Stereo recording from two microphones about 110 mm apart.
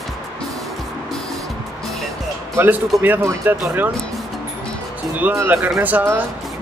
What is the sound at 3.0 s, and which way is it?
Speech, 15° right (ahead or behind).